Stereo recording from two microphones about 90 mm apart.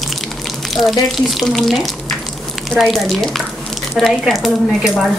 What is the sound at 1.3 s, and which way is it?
Speech, centre (ahead or behind).